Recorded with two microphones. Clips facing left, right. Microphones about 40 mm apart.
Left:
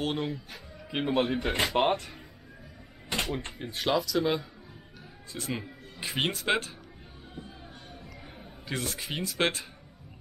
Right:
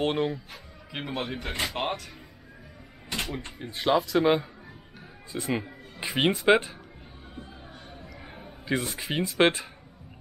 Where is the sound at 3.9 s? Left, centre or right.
Right.